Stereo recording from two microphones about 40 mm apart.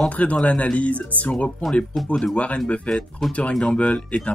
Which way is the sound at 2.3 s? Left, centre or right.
Left.